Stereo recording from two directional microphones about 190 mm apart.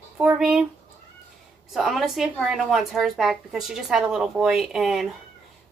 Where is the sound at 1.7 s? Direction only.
Centre (ahead or behind).